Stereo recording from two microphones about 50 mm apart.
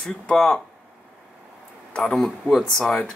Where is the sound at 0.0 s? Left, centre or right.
Centre.